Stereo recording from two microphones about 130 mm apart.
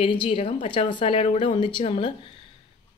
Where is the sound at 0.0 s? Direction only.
45° left (ahead or behind).